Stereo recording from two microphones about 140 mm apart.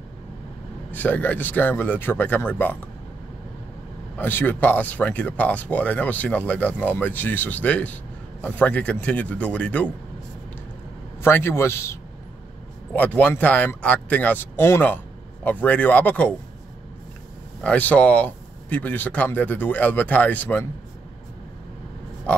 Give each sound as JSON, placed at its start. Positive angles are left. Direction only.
{"t": 0.9, "sound": "speech", "side_deg": 10}
{"t": 4.2, "sound": "speech", "side_deg": 15}
{"t": 11.2, "sound": "a man's voice", "side_deg": 15}
{"t": 17.6, "sound": "speech", "side_deg": 10}